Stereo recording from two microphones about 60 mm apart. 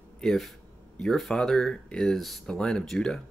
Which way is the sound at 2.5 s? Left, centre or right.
Centre.